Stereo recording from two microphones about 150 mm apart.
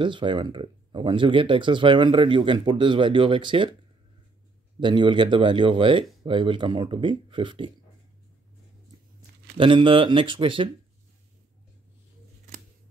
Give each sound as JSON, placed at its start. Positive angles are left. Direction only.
{"t": 0.0, "sound": "speech", "side_deg": -35}
{"t": 4.7, "sound": "speech", "side_deg": -30}
{"t": 9.6, "sound": "speech", "side_deg": -35}